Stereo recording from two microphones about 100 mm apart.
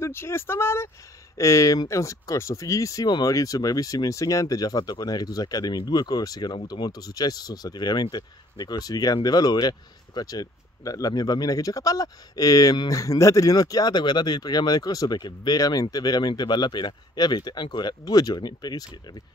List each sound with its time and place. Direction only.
0.0 s speech: 25° left (ahead or behind); by 19.2 s 45° left (ahead or behind)